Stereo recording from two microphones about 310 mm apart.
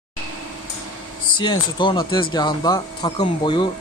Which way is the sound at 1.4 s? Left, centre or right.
Centre.